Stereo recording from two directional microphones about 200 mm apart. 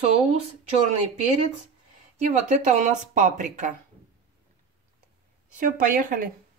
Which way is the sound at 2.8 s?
40° right (ahead or behind).